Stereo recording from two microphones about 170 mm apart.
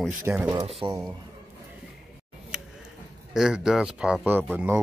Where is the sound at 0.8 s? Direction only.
35° right (ahead or behind).